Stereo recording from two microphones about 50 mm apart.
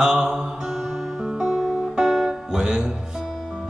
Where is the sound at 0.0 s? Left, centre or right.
Centre.